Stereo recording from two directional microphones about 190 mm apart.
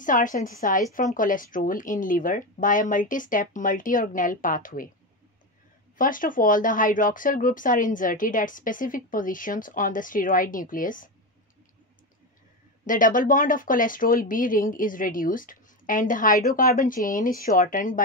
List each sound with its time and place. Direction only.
0.0 s speech: 45° left (ahead or behind)
5.9 s speech: 45° left (ahead or behind)
12.8 s speech: 45° left (ahead or behind)